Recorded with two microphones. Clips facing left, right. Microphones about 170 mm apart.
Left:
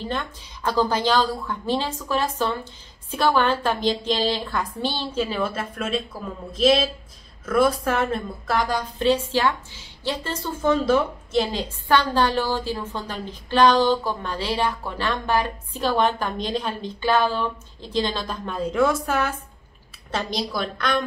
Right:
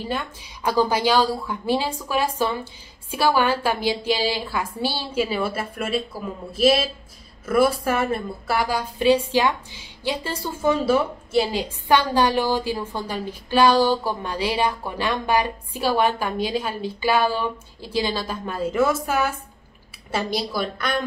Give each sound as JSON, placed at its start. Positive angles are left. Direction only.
{"t": 0.0, "sound": "a woman's voice", "side_deg": -10}